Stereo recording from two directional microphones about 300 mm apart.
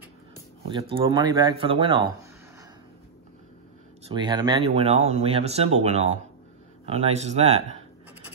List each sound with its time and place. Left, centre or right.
0.7 s speech: centre
4.1 s speech: centre